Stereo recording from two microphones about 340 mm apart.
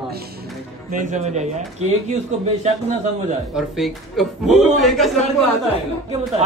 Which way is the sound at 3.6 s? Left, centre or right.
Centre.